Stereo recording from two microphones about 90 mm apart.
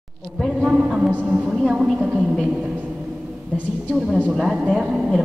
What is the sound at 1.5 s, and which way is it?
Speech, 5° right (ahead or behind).